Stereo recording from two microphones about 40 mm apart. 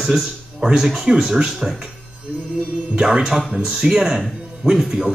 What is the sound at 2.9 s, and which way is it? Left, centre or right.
Mantra, right.